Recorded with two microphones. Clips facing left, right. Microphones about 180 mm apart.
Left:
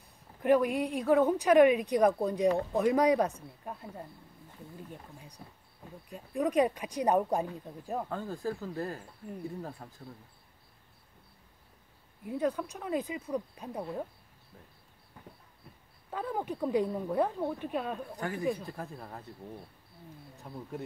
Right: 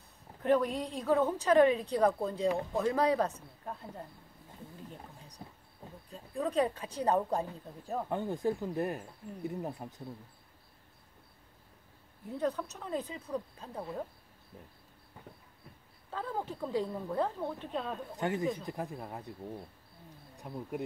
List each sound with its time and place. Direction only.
0.4 s a woman's voice: 10° left (ahead or behind)
5.4 s speech: 25° right (ahead or behind)
6.0 s a woman's voice: 15° left (ahead or behind)
8.1 s speech: 20° right (ahead or behind)
12.3 s a woman's voice: 10° left (ahead or behind)
16.1 s a woman's voice: 15° left (ahead or behind)
18.1 s speech: 20° right (ahead or behind)
20.3 s speech: 15° right (ahead or behind)